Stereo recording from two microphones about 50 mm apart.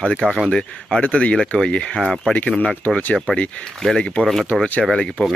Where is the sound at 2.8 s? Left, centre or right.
Left.